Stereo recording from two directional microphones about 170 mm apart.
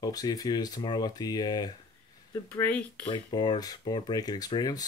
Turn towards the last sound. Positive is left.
turn(degrees=25)  # may be behind; listen again after turning